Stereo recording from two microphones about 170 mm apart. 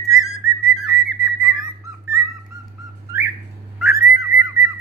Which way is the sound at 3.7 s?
5° right (ahead or behind).